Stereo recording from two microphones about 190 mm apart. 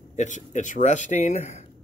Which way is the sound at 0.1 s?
40° left (ahead or behind).